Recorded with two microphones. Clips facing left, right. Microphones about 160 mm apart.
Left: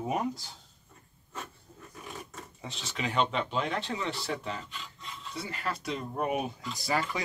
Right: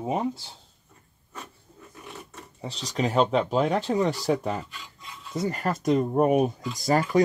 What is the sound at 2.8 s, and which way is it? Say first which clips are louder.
Speech: right 7 dB; 40° right (ahead or behind).